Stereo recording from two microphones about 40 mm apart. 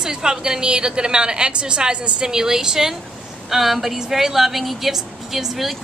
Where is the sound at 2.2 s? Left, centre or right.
Centre.